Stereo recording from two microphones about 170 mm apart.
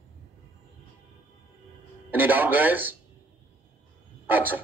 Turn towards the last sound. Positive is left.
turn(degrees=-10)  # may be behind; listen again after turning